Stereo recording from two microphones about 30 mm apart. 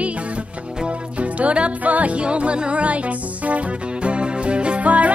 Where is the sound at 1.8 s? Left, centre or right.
Right.